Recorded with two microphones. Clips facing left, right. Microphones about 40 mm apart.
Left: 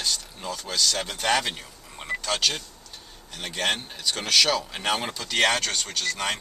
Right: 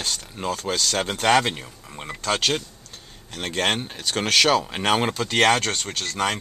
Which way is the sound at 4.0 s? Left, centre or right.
Right.